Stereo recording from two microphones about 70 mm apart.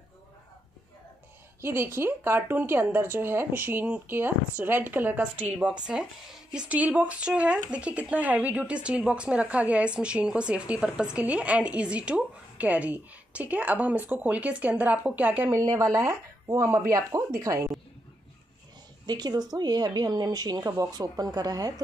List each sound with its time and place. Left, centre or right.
1.6 s a woman's voice: right
15.8 s speech: right
19.0 s a woman's voice: right